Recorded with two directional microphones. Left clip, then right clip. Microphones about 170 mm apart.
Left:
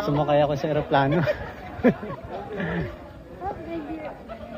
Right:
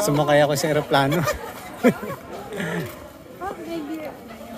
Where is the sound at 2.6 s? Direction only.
25° right (ahead or behind).